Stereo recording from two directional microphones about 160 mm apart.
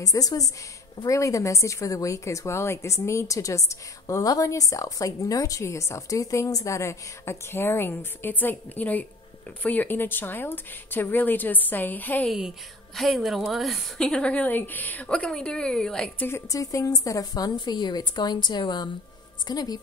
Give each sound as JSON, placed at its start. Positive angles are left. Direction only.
{"t": 0.0, "sound": "a woman's voice", "side_deg": 20}
{"t": 12.3, "sound": "a woman's voice", "side_deg": 0}
{"t": 16.3, "sound": "a woman's voice", "side_deg": 20}